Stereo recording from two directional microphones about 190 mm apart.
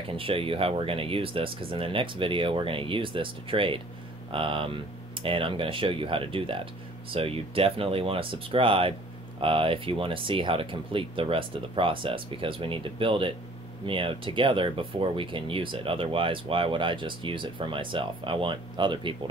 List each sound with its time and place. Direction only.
0.1 s speech: 30° right (ahead or behind)